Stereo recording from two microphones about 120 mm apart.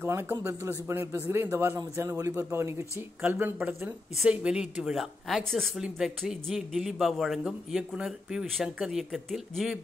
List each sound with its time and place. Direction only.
0.0 s speech: 20° right (ahead or behind)
3.2 s a woman's voice: 10° right (ahead or behind)